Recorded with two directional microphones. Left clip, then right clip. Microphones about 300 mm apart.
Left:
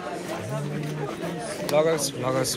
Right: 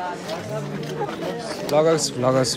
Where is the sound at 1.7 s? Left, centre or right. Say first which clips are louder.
Right 4 dB; centre.